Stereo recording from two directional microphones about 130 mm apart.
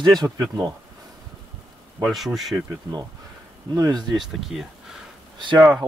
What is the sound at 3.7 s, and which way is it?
Speech, 25° right (ahead or behind).